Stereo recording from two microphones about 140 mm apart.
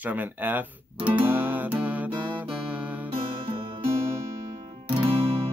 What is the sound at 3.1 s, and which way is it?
Music, 40° right (ahead or behind).